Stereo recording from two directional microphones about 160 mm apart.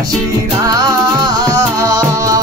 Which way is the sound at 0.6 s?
25° right (ahead or behind).